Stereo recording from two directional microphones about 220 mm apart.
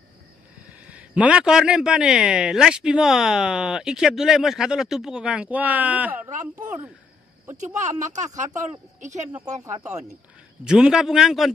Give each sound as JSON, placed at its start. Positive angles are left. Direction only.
{"t": 0.7, "sound": "speech", "side_deg": -5}
{"t": 7.5, "sound": "speech", "side_deg": -35}
{"t": 10.6, "sound": "speech", "side_deg": -5}